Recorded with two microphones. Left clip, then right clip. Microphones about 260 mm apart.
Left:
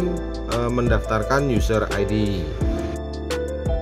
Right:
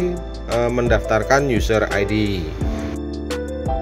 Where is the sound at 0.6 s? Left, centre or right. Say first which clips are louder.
Right 5 dB; left.